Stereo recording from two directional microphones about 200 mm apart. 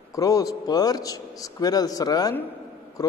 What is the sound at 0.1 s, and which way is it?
A man's voice, 15° left (ahead or behind).